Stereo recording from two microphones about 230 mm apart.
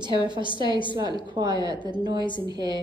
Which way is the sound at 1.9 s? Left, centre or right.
Centre.